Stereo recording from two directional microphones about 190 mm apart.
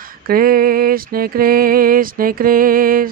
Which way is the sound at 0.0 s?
50° right (ahead or behind).